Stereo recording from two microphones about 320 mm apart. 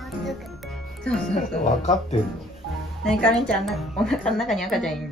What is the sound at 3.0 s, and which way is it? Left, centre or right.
Speech, centre.